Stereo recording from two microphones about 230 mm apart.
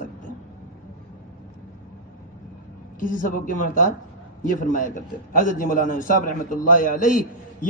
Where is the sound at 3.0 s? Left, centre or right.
Left.